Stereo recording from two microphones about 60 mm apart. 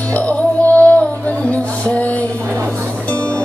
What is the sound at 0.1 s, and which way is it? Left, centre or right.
Music, left.